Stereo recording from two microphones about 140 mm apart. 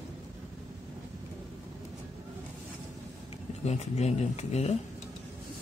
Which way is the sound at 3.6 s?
55° left (ahead or behind).